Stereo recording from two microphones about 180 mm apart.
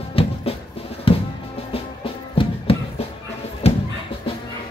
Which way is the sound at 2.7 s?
30° left (ahead or behind).